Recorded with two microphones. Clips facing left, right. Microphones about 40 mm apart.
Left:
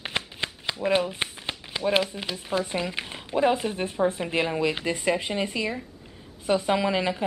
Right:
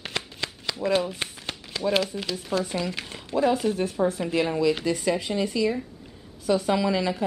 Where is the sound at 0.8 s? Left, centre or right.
Left.